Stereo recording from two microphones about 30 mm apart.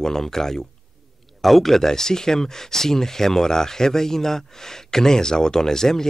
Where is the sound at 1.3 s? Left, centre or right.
Centre.